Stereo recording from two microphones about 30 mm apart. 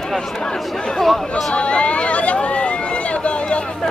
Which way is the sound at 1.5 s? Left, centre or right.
Left.